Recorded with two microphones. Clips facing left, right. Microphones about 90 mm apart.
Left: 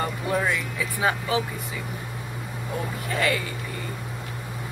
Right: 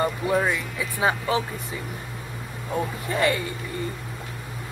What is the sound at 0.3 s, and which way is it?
Speech, 20° right (ahead or behind).